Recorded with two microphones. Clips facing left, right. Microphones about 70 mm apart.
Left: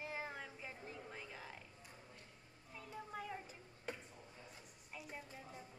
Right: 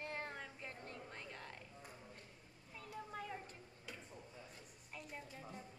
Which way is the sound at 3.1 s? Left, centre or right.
Centre.